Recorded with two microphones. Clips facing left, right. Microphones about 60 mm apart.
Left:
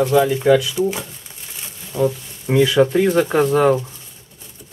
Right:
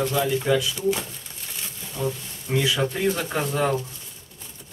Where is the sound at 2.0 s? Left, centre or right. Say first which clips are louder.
Left 9 dB; left.